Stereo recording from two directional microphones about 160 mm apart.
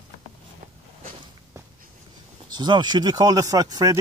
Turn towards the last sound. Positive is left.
turn(degrees=-25)  # may be behind; listen again after turning